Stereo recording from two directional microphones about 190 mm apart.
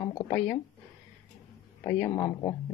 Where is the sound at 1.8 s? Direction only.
10° left (ahead or behind).